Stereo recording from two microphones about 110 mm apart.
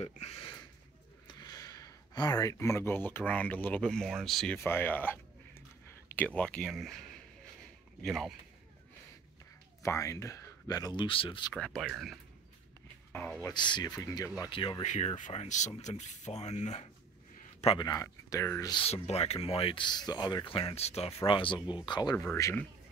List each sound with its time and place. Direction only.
0.0 s speech: 70° left (ahead or behind)
1.2 s speech: 35° left (ahead or behind); by 4.6 s 5° left (ahead or behind)
4.6 s speech: 20° left (ahead or behind); by 8.4 s centre (ahead or behind)
9.8 s speech: 30° left (ahead or behind)
11.1 s speech: 50° left (ahead or behind)
11.5 s speech: 10° left (ahead or behind)
13.1 s speech: 15° left (ahead or behind)
13.5 s speech: 45° left (ahead or behind)
14.5 s speech: 50° left (ahead or behind)
14.8 s speech: 85° left
17.7 s speech: 35° left (ahead or behind)
18.9 s speech: 70° left (ahead or behind)
21.3 s speech: 50° left (ahead or behind)
22.1 s speech: 15° left (ahead or behind)